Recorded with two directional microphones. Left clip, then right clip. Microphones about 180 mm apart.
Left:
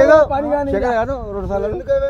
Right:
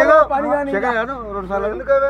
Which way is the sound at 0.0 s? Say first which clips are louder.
Left 1 dB; 55° left (ahead or behind).